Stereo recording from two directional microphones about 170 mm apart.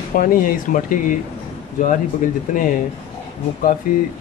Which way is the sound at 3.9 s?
60° left (ahead or behind).